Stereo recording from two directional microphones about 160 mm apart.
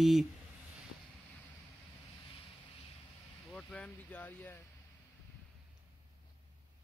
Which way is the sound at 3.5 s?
10° left (ahead or behind).